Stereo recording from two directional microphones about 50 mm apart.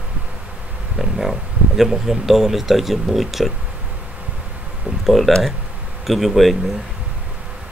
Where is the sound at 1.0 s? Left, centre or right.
Centre.